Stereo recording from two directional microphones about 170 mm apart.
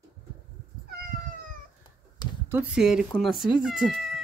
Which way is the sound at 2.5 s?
10° right (ahead or behind).